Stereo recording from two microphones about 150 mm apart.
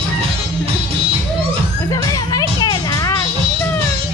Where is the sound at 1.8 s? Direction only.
25° left (ahead or behind).